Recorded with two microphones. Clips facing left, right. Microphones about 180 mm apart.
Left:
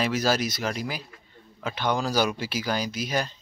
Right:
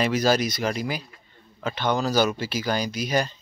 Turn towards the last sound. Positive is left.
turn(degrees=5)  # may be behind; listen again after turning